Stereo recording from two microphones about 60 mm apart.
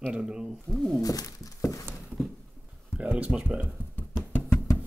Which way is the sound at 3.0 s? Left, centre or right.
Right.